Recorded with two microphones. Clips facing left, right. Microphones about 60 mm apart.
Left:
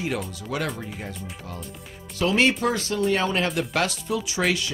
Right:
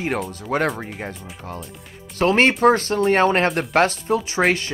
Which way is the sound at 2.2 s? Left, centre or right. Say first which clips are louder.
Right 6 dB; right.